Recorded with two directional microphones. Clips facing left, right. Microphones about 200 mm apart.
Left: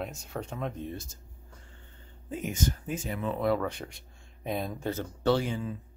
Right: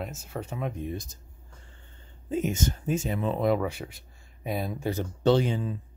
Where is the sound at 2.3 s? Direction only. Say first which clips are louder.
Right 4 dB; 25° right (ahead or behind).